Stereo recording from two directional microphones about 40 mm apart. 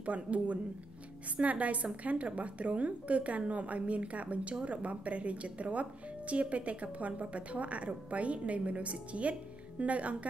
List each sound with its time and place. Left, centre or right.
0.0 s speech: right